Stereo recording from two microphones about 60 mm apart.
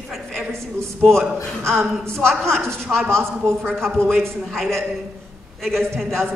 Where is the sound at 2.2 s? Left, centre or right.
Centre.